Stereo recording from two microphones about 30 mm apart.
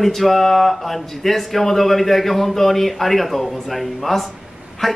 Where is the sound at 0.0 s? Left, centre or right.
Centre.